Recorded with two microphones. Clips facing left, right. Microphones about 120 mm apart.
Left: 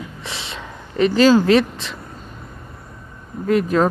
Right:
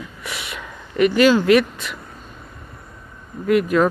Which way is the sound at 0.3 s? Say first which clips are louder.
Right 2 dB; 30° left (ahead or behind).